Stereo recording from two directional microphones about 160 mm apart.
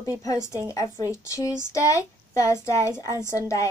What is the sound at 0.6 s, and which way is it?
Speech, 20° left (ahead or behind).